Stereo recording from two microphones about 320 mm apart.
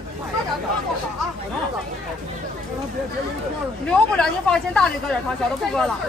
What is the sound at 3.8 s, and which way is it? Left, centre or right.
Speech, centre.